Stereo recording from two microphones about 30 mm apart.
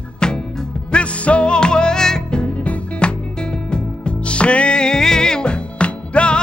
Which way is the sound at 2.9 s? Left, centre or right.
Left.